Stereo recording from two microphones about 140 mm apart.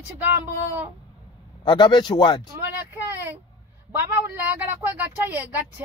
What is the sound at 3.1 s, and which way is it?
A woman's voice, 15° right (ahead or behind).